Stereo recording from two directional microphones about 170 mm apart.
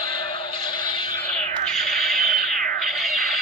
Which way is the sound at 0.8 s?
30° left (ahead or behind).